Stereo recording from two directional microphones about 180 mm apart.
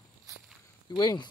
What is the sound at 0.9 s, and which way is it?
Speech, 25° left (ahead or behind).